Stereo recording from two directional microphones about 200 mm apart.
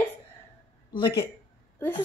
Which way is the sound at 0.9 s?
25° left (ahead or behind).